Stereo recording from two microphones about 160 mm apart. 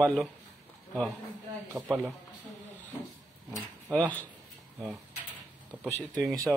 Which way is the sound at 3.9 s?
10° left (ahead or behind).